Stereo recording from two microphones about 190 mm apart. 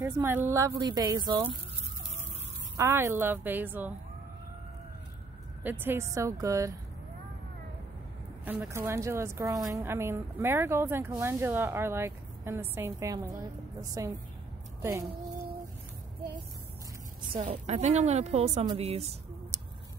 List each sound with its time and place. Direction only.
0.0 s speech: 10° right (ahead or behind)
2.8 s speech: 15° right (ahead or behind)
5.6 s speech: 10° right (ahead or behind)
8.5 s a woman's voice: 10° right (ahead or behind)
17.4 s speech: 35° right (ahead or behind)
19.5 s a sound: 15° right (ahead or behind)